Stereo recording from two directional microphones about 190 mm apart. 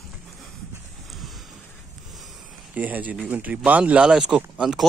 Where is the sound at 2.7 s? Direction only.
10° right (ahead or behind).